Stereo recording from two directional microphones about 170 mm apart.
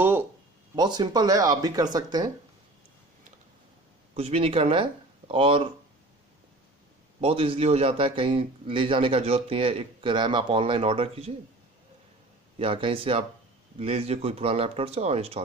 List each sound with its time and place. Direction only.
0.0 s a sound: 15° right (ahead or behind)
0.7 s speech: 25° right (ahead or behind)
4.1 s speech: 35° right (ahead or behind)
7.2 s a man's voice: 35° right (ahead or behind)
12.5 s a man's voice: 30° right (ahead or behind)